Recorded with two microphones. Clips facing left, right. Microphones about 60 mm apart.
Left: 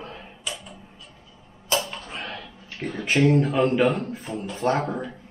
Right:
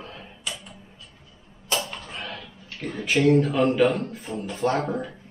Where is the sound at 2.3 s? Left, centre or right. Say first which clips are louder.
Left 1 dB; left.